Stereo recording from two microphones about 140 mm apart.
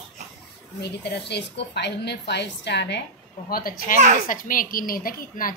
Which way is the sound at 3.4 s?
90° left.